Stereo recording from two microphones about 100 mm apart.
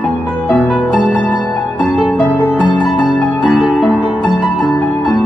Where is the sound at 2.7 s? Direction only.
45° left (ahead or behind).